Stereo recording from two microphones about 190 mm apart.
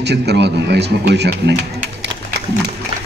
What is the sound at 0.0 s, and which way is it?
Speech, 60° right (ahead or behind).